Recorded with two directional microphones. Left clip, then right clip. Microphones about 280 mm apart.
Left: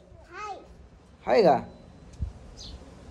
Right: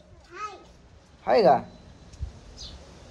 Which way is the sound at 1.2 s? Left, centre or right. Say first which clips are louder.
Right 1 dB; centre.